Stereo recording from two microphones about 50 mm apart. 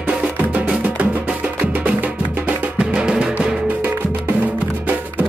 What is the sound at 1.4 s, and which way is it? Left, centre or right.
Music, right.